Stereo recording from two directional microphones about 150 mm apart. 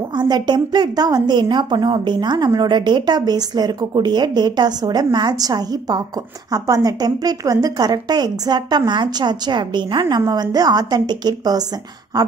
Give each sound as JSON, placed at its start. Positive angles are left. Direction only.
{"t": 0.1, "sound": "a woman's voice", "side_deg": -30}